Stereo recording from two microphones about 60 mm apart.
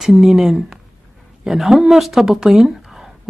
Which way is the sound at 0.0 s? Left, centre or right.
Centre.